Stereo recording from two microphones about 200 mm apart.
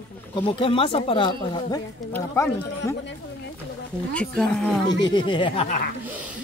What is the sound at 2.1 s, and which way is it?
Speech, 15° left (ahead or behind).